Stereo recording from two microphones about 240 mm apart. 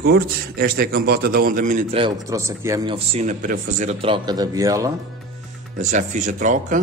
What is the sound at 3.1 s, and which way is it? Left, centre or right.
Speech, right.